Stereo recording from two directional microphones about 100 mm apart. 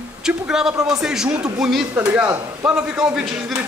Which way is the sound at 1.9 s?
15° right (ahead or behind).